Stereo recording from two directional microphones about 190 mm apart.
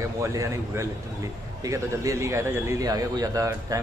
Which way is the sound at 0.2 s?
15° right (ahead or behind).